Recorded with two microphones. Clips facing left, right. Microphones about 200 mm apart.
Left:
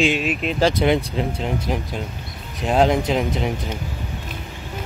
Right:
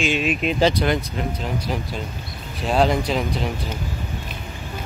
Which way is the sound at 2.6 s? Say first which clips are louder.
Left 2 dB; 15° left (ahead or behind).